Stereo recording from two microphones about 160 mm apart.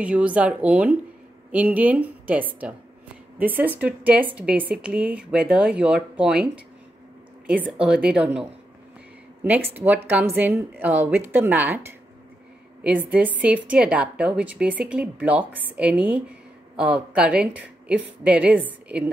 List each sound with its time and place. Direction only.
0.0 s a woman's voice: 10° right (ahead or behind)
7.8 s a woman's voice: 5° right (ahead or behind)